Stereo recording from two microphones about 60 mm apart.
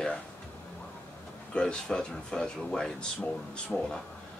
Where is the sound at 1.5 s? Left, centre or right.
Centre.